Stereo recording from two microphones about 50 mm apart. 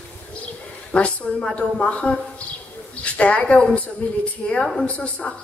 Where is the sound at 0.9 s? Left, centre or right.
Left.